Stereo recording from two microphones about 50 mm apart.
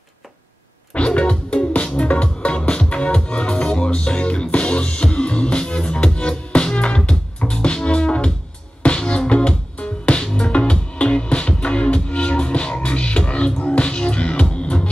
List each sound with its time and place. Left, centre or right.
0.9 s music: left